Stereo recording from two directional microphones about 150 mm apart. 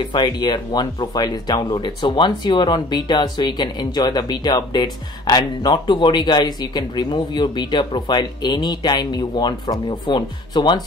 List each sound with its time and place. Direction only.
0.1 s speech: 30° left (ahead or behind)